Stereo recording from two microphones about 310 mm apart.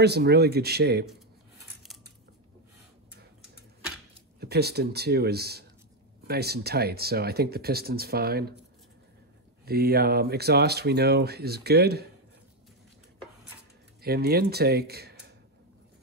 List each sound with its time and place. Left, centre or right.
0.0 s speech: right
4.4 s speech: right
9.7 s speech: right
14.0 s speech: right